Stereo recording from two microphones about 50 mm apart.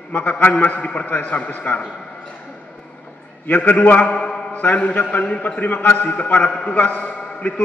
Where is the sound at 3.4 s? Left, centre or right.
Left.